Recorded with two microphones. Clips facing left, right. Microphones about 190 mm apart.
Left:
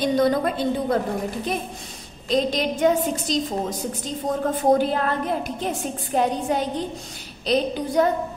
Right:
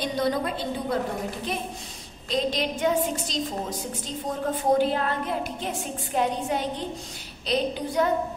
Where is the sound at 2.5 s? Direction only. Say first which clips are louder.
Left 4 dB; 45° left (ahead or behind).